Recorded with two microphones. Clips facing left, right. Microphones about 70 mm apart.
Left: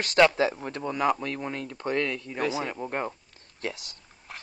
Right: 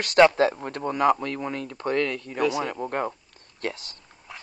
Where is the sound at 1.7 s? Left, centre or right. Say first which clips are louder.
Right 3 dB; centre.